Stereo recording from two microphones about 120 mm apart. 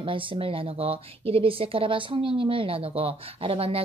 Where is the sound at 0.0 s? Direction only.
45° right (ahead or behind).